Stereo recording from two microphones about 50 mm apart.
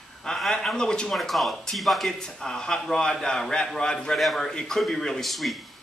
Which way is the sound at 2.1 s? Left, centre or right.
Centre.